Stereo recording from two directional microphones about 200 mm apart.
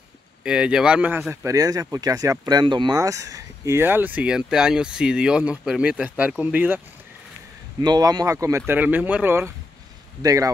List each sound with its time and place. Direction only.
0.4 s speech: 5° right (ahead or behind)
7.8 s speech: 20° right (ahead or behind)